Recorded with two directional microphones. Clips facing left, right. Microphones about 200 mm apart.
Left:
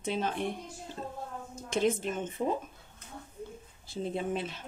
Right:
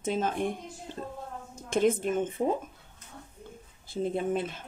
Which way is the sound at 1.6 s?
50° right (ahead or behind).